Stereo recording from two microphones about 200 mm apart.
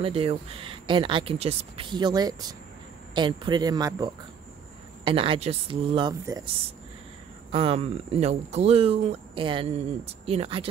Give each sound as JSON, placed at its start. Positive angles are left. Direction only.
{"t": 0.0, "sound": "speech", "side_deg": -30}
{"t": 7.5, "sound": "speech", "side_deg": -30}